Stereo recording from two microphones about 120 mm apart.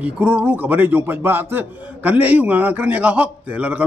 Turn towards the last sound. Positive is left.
turn(degrees=-10)  # may be behind; listen again after turning